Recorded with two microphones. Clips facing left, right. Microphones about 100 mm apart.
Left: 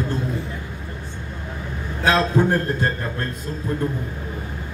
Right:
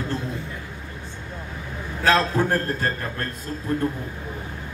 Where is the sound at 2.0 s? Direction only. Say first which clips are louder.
Left 2 dB; 15° left (ahead or behind).